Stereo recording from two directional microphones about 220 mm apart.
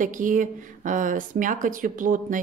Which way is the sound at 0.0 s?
35° right (ahead or behind).